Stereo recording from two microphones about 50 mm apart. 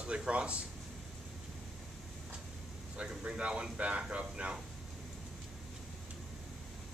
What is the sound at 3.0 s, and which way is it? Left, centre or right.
Speech, right.